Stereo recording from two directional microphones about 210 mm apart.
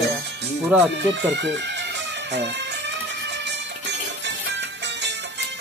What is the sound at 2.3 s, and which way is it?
Music, 55° right (ahead or behind).